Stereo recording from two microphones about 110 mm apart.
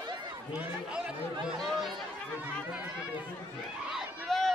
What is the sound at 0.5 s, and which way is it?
Speech, 10° right (ahead or behind).